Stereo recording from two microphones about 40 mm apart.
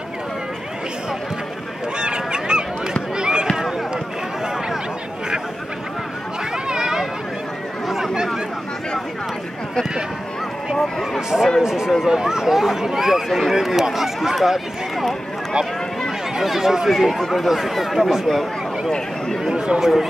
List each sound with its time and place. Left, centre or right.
2.0 s goose: right
3.2 s a sound: right
6.5 s a sound: centre
11.1 s speech: centre
16.3 s speech: centre
19.5 s speech: right
19.8 s speech: centre